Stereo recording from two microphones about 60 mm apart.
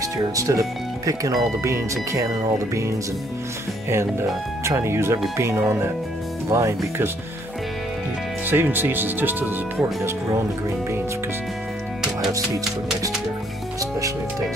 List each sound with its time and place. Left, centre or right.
0.4 s speech: right
3.9 s speech: right
8.5 s speech: right
13.7 s speech: right